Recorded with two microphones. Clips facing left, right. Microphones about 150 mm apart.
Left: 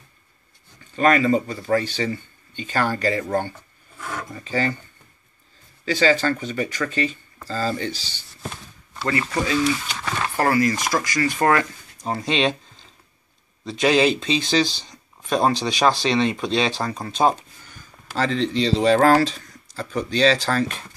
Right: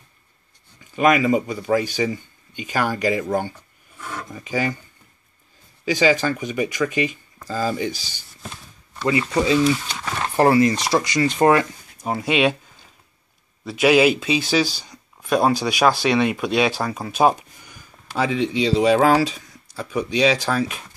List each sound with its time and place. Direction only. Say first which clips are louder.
0.9 s speech: right 1 dB; 10° right (ahead or behind)
5.9 s speech: right 1 dB; 15° right (ahead or behind)
9.3 s speech: right 4 dB; 20° right (ahead or behind)
13.7 s speech: right 3 dB; 10° right (ahead or behind)